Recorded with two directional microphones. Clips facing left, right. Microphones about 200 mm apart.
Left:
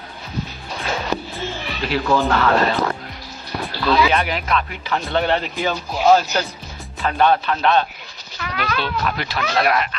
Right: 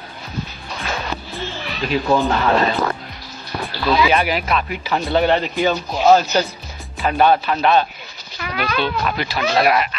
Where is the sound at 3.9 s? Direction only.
10° right (ahead or behind).